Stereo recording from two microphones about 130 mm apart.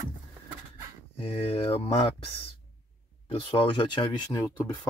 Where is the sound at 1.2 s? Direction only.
45° left (ahead or behind).